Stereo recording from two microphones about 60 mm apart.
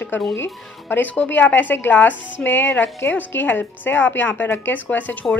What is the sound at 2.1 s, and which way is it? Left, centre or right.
Speech, right.